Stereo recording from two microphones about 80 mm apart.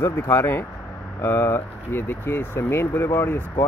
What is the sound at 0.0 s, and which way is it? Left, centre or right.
Speech, left.